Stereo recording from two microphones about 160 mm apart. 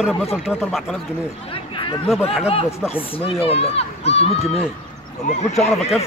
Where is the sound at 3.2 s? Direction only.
35° left (ahead or behind).